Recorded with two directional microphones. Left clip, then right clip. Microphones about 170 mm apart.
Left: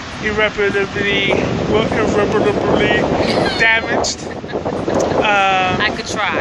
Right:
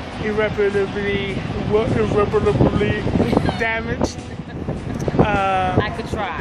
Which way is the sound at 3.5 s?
15° left (ahead or behind).